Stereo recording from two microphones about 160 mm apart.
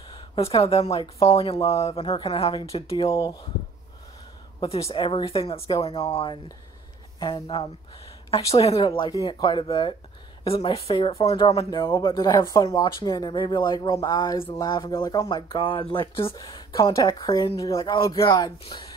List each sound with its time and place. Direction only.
0.1 s speech: 40° left (ahead or behind)
3.1 s speech: 20° left (ahead or behind)
4.6 s speech: 40° left (ahead or behind)